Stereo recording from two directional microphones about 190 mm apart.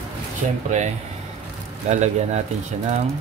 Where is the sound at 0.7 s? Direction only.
40° right (ahead or behind).